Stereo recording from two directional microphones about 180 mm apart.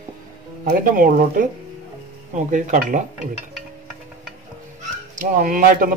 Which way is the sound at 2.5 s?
45° right (ahead or behind).